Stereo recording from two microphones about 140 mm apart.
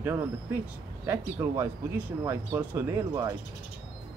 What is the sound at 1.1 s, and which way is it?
Speech, 15° right (ahead or behind).